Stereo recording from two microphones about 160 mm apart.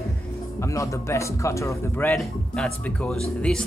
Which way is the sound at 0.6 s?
20° left (ahead or behind).